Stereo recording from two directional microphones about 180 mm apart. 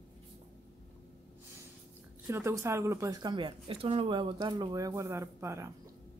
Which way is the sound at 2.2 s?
15° right (ahead or behind).